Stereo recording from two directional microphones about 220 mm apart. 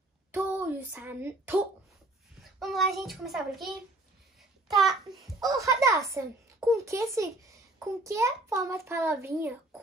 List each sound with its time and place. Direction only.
0.3 s a sound: 5° right (ahead or behind)
2.6 s child singing: centre (ahead or behind)
5.1 s child singing: centre (ahead or behind)
5.4 s a child's voice: 15° right (ahead or behind)